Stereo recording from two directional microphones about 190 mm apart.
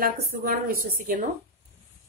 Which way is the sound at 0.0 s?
50° right (ahead or behind).